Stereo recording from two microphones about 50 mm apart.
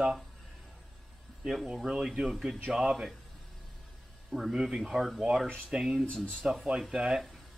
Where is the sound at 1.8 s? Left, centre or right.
Centre.